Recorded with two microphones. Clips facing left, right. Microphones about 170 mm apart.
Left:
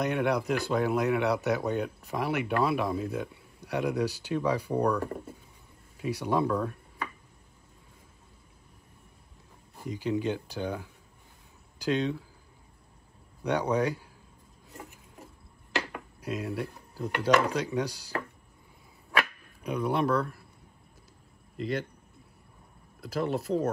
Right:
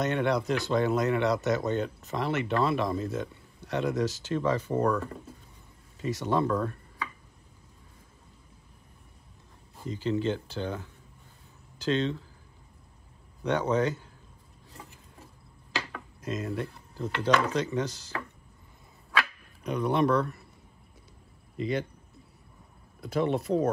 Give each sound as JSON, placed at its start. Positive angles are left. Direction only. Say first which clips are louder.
{"t": 0.0, "sound": "speech", "louder": "even", "side_deg": 10}
{"t": 9.8, "sound": "speech", "louder": "right 1 dB", "side_deg": 15}
{"t": 13.4, "sound": "speech", "louder": "right 1 dB", "side_deg": 10}
{"t": 15.9, "sound": "speech", "louder": "even", "side_deg": 10}
{"t": 19.6, "sound": "speech", "louder": "right 2 dB", "side_deg": 5}
{"t": 22.9, "sound": "speech", "louder": "right 3 dB", "side_deg": 0}